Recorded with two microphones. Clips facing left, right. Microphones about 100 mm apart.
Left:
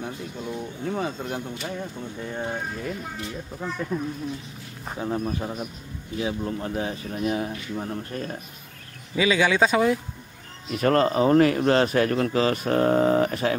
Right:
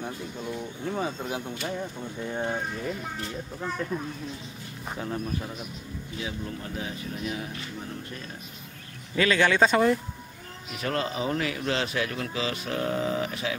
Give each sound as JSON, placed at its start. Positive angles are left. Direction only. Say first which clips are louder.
{"t": 0.0, "sound": "speech", "louder": "left 2 dB", "side_deg": 5}
{"t": 3.2, "sound": "speech", "louder": "left 1 dB", "side_deg": 0}
{"t": 4.9, "sound": "speech", "louder": "left 5 dB", "side_deg": 20}
{"t": 5.2, "sound": "speech", "louder": "left 5 dB", "side_deg": 40}
{"t": 9.1, "sound": "speech", "louder": "left 2 dB", "side_deg": 10}
{"t": 10.7, "sound": "a man's voice", "louder": "left 9 dB", "side_deg": 50}